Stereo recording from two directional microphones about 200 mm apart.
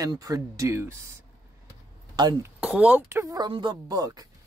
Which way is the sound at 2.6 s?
5° right (ahead or behind).